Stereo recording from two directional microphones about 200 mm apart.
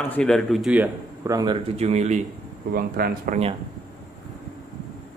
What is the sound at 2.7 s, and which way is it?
Speech, 50° right (ahead or behind).